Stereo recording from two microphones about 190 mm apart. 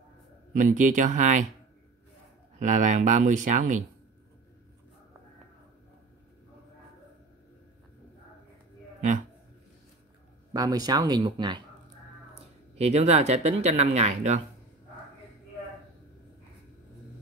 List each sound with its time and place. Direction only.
0.5 s speech: 45° right (ahead or behind)
2.6 s speech: 40° right (ahead or behind)
10.5 s speech: 20° right (ahead or behind)
12.7 s speech: 35° right (ahead or behind)